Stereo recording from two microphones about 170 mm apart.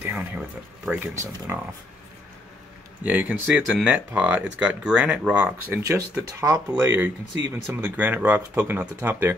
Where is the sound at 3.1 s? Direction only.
10° right (ahead or behind).